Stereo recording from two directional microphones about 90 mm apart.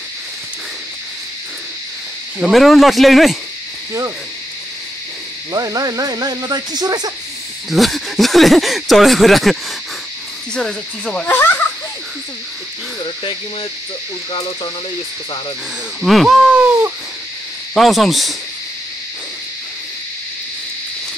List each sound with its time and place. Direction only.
2.4 s speech: centre (ahead or behind)
5.5 s speech: 45° right (ahead or behind)
7.7 s speech: centre (ahead or behind)
11.2 s children playing: 25° left (ahead or behind)
16.0 s speech: centre (ahead or behind)
17.7 s speech: centre (ahead or behind)